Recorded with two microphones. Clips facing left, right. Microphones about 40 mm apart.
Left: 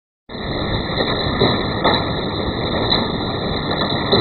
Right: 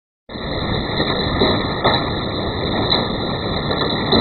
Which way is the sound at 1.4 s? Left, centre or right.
Centre.